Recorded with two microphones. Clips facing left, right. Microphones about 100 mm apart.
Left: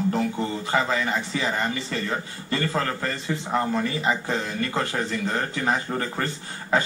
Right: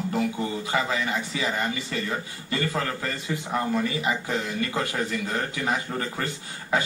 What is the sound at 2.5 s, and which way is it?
Speech, 30° left (ahead or behind).